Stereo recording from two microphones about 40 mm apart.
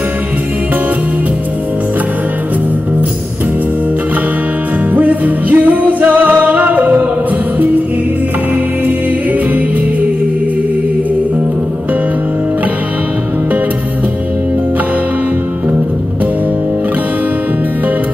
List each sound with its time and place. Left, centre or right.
4.9 s music: right
6.5 s music: right